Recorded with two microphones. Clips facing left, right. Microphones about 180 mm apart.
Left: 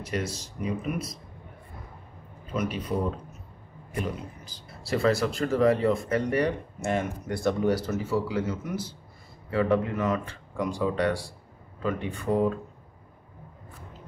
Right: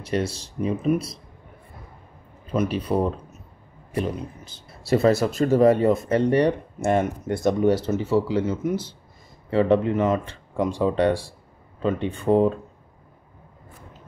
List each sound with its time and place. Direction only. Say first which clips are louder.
0.0 s speech: right 6 dB; 30° right (ahead or behind)
2.9 s speech: right 6 dB; 65° right (ahead or behind)
3.9 s speech: right 5 dB; 25° right (ahead or behind)
6.8 s speech: right 7 dB; 50° right (ahead or behind)
7.2 s speech: right 4 dB; 20° right (ahead or behind)